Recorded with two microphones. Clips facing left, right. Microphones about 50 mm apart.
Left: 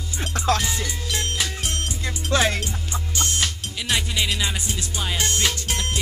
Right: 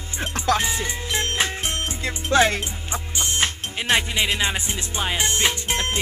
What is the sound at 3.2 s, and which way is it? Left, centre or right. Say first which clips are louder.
Music: right 2 dB; right.